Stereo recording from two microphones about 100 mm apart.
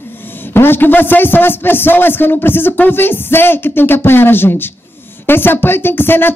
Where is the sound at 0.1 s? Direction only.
20° left (ahead or behind).